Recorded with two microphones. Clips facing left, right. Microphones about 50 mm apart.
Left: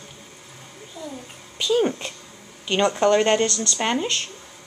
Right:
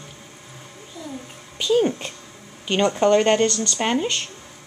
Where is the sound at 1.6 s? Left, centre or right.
Centre.